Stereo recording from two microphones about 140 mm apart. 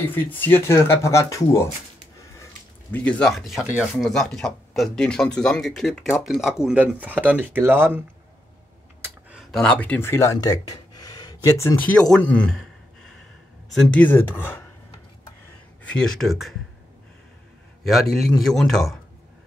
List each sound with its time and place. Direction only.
0.1 s speech: 15° left (ahead or behind)
2.9 s speech: 10° left (ahead or behind); by 4.0 s 10° right (ahead or behind)
4.0 s speech: centre (ahead or behind); by 8.0 s 15° right (ahead or behind)
9.4 s speech: 5° left (ahead or behind)
12.1 s a sound: 10° left (ahead or behind)
13.7 s speech: 10° left (ahead or behind)
15.8 s speech: 5° left (ahead or behind)
18.1 s speech: centre (ahead or behind)